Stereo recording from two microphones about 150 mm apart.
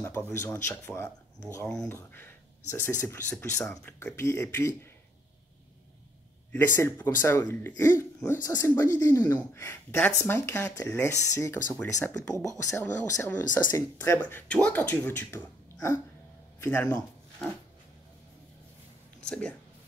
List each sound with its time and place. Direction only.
0.0 s speech: 15° left (ahead or behind)
6.5 s speech: 15° left (ahead or behind)
19.2 s speech: 5° left (ahead or behind)